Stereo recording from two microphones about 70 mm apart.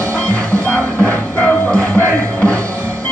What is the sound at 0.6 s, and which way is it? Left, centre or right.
Music, left.